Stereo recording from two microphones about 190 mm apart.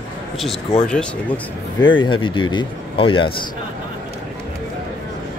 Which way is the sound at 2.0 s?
25° left (ahead or behind).